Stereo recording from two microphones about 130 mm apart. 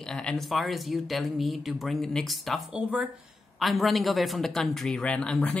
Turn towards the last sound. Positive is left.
turn(degrees=5)  # may be behind; listen again after turning